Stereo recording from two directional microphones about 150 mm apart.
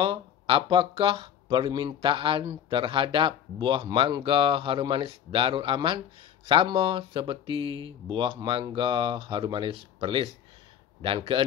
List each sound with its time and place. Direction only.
0.0 s speech: 35° right (ahead or behind)